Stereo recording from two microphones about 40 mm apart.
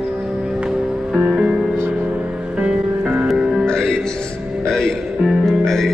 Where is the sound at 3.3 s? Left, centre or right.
Centre.